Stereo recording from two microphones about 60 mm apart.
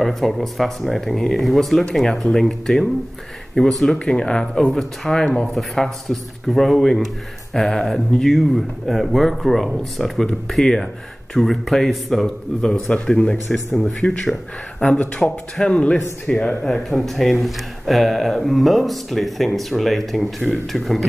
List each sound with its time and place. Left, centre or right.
0.0 s speech: centre
3.9 s speech: centre